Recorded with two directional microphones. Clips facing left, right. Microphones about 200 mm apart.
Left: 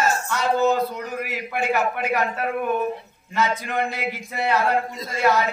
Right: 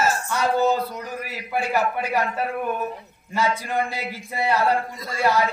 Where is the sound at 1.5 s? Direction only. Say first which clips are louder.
Even; 35° right (ahead or behind).